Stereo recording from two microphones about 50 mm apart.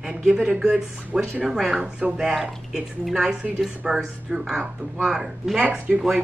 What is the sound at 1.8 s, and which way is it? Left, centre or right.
A woman's voice, centre.